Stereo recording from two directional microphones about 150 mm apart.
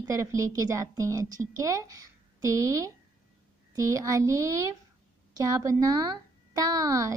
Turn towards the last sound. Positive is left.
turn(degrees=-25)  # may be behind; listen again after turning